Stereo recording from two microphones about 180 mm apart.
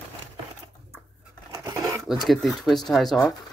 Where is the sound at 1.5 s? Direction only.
20° right (ahead or behind).